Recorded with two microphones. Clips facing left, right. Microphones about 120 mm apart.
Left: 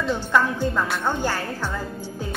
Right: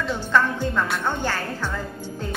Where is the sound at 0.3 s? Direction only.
10° left (ahead or behind).